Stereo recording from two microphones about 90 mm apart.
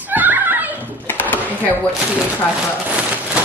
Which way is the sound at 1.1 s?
20° left (ahead or behind).